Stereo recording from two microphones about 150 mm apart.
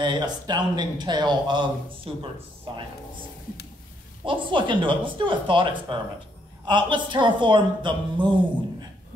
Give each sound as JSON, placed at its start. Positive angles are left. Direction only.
{"t": 0.0, "sound": "speech", "side_deg": -30}
{"t": 4.2, "sound": "a woman's voice", "side_deg": -35}